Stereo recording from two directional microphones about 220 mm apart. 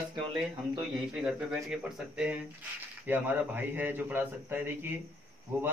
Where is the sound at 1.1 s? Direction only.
5° right (ahead or behind).